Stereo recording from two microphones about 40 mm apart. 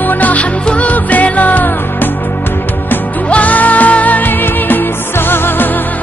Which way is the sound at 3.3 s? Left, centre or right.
Left.